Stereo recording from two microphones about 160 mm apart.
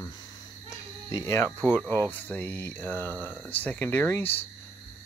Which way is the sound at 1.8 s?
10° left (ahead or behind).